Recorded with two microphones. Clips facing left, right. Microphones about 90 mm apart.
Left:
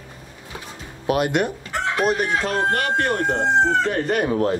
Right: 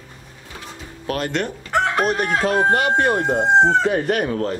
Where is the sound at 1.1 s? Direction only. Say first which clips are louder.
Left 3 dB; 10° left (ahead or behind).